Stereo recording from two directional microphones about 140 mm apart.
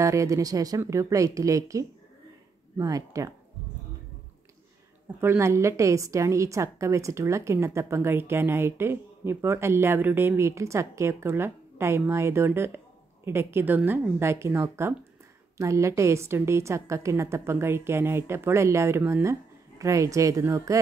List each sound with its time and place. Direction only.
0.0 s a woman's voice: 20° right (ahead or behind)
5.2 s a woman's voice: 20° right (ahead or behind)